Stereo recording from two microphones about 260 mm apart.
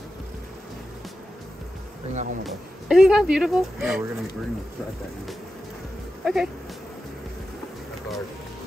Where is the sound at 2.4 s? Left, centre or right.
Centre.